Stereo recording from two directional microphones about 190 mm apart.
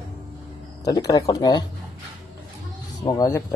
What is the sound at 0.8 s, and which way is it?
Speech, 20° left (ahead or behind).